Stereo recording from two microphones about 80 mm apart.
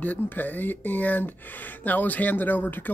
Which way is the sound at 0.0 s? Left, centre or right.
Left.